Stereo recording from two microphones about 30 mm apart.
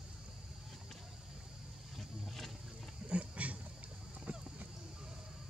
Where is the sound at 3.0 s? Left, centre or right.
Right.